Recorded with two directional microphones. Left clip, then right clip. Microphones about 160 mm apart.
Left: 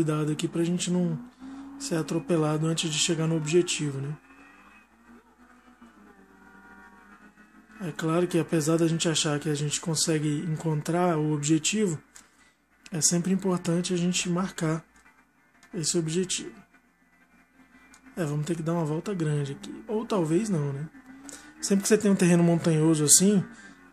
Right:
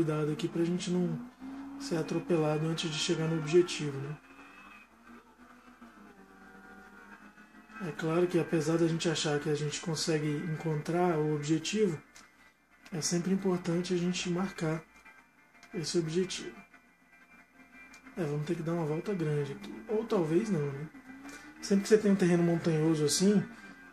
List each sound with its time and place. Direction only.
0.0 s speech: 60° left (ahead or behind)
7.8 s speech: 60° left (ahead or behind)
12.8 s speech: 60° left (ahead or behind)
15.8 s speech: 60° left (ahead or behind)
18.1 s speech: 60° left (ahead or behind)
21.5 s speech: 60° left (ahead or behind)